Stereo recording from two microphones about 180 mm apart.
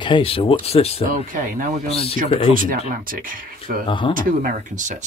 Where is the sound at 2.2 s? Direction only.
35° left (ahead or behind).